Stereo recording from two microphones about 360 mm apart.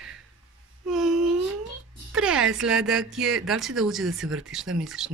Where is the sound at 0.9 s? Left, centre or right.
Centre.